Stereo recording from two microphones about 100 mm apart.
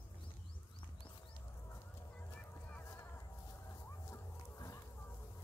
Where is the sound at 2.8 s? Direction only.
30° left (ahead or behind).